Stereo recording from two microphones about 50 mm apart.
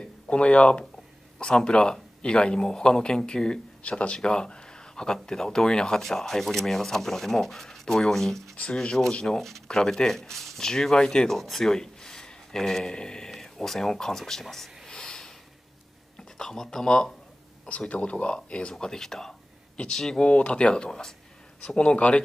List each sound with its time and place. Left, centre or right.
0.0 s a man's voice: left; by 14.7 s centre
14.9 s snort: centre
16.3 s a man's voice: centre
17.6 s a man's voice: left
20.2 s speech: left